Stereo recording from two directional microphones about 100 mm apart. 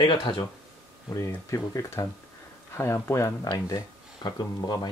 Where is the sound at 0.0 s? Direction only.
55° left (ahead or behind).